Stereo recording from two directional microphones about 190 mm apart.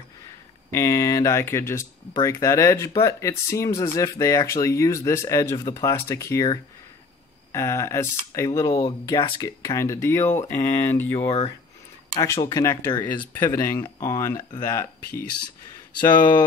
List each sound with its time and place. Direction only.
0.7 s speech: 15° left (ahead or behind)
11.1 s speech: 35° left (ahead or behind)
12.4 s speech: 15° left (ahead or behind)